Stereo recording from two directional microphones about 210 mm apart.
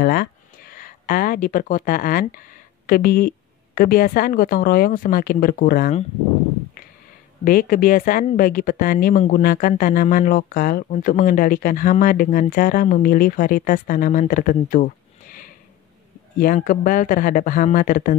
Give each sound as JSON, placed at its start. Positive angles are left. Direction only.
{"t": 0.0, "sound": "a woman's voice", "side_deg": 45}
{"t": 7.4, "sound": "a woman's voice", "side_deg": 40}